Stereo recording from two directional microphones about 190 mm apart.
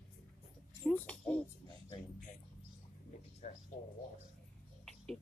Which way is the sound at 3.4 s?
40° left (ahead or behind).